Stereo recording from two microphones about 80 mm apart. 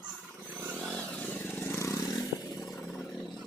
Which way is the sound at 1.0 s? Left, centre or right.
Left.